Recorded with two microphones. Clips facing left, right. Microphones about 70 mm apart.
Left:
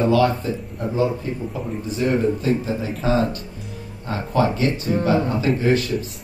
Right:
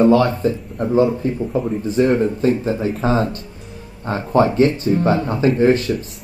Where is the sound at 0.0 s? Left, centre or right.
Right.